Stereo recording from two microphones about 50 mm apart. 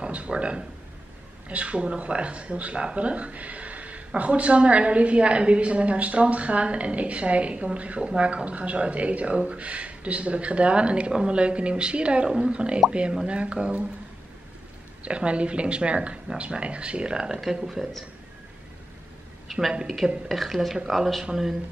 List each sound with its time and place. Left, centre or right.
0.0 s speech: right
15.0 s speech: right
19.7 s speech: centre
20.2 s speech: centre